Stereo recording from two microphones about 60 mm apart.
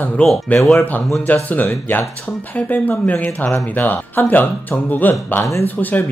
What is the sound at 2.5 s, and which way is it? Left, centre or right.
Speech, left.